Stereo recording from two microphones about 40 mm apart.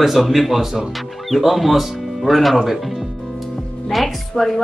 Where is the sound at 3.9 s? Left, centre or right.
Centre.